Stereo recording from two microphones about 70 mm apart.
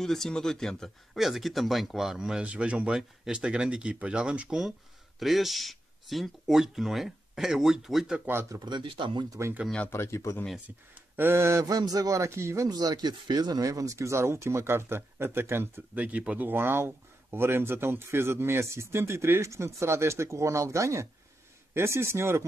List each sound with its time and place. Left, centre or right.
0.0 s speech: centre
5.2 s speech: centre
8.5 s speech: right
9.8 s a man's voice: left
11.0 s speech: right
11.6 s a man's voice: right
12.6 s speech: right
15.9 s speech: right